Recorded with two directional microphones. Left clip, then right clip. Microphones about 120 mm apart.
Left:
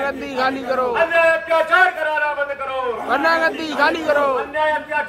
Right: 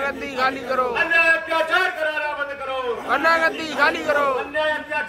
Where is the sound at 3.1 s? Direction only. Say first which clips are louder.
Left 1 dB; 25° left (ahead or behind).